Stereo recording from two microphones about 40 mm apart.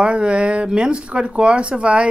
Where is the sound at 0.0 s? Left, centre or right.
Right.